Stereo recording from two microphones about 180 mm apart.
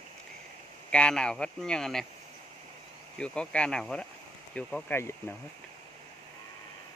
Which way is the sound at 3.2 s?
5° left (ahead or behind).